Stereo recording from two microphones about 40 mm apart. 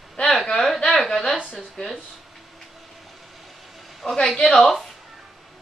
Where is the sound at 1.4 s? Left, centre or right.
Right.